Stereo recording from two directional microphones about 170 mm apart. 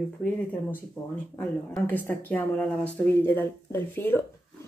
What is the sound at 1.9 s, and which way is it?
Speech, 10° left (ahead or behind).